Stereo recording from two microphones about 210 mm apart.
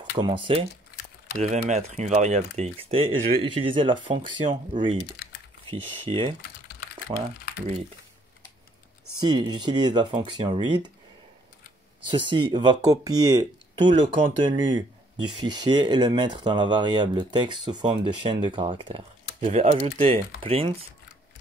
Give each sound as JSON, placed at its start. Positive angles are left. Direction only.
{"t": 0.1, "sound": "speech", "side_deg": -25}
{"t": 6.0, "sound": "speech", "side_deg": -25}
{"t": 9.2, "sound": "speech", "side_deg": -20}
{"t": 12.3, "sound": "speech", "side_deg": -20}